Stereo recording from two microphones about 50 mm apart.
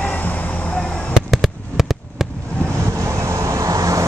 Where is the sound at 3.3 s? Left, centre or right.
Right.